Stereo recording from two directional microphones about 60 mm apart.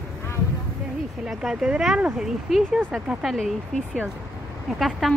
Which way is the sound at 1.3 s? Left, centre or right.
Centre.